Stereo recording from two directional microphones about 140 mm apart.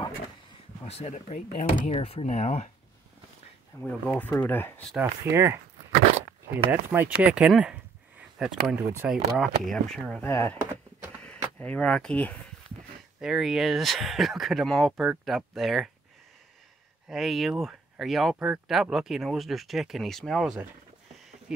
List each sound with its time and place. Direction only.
0.8 s speech: 50° left (ahead or behind)
3.8 s speech: 10° left (ahead or behind)
5.0 s speech: 20° right (ahead or behind)
6.7 s speech: 10° right (ahead or behind); by 10.2 s 5° left (ahead or behind)
10.2 s speech: 20° left (ahead or behind)
13.2 s speech: 5° right (ahead or behind)
17.1 s speech: centre (ahead or behind)